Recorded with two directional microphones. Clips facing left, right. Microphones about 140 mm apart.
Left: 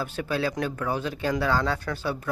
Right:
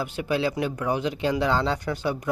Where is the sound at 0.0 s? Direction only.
15° right (ahead or behind).